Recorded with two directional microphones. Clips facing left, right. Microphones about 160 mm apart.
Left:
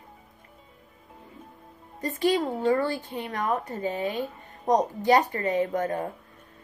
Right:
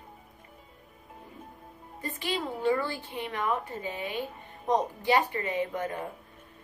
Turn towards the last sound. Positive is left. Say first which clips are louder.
# left 5 dB
turn(degrees=40)  # may be behind; listen again after turning